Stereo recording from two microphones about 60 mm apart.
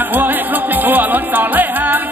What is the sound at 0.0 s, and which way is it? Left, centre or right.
Music, right.